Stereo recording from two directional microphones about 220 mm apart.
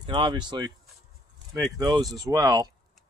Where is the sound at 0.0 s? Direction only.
20° right (ahead or behind).